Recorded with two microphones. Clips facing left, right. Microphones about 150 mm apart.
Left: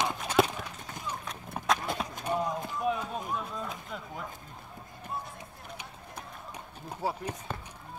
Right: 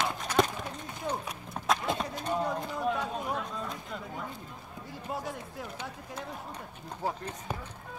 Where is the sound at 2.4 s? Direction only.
70° right (ahead or behind).